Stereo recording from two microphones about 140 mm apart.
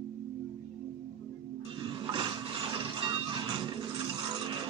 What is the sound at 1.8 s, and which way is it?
Music, 35° right (ahead or behind).